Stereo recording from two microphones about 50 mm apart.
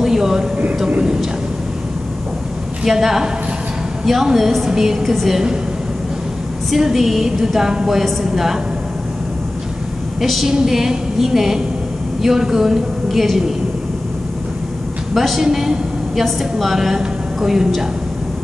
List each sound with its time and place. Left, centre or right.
0.0 s a sound: centre
0.8 s speech: right
2.8 s a woman's voice: centre
6.7 s a woman's voice: centre
10.2 s a woman's voice: centre
15.1 s a woman's voice: centre